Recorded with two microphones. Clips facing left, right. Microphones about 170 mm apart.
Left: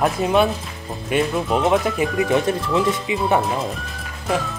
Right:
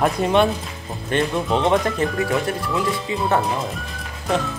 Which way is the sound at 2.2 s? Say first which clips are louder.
Left 3 dB; 20° left (ahead or behind).